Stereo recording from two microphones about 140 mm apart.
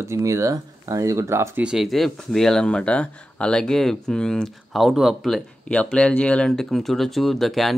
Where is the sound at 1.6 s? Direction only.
Centre (ahead or behind).